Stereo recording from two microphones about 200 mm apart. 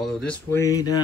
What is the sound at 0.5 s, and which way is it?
Speech, 15° left (ahead or behind).